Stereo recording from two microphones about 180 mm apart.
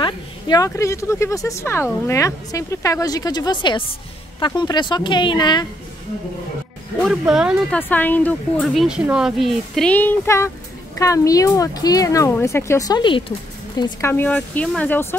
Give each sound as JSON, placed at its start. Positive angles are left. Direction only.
{"t": 0.0, "sound": "a woman's voice", "side_deg": 20}
{"t": 7.0, "sound": "speech", "side_deg": 0}
{"t": 7.7, "sound": "a woman's voice", "side_deg": 10}
{"t": 14.1, "sound": "a woman's voice", "side_deg": 10}